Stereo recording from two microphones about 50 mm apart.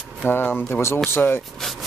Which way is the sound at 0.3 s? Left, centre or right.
Left.